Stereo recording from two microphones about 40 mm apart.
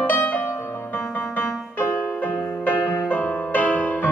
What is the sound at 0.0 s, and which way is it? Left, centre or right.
Music, left.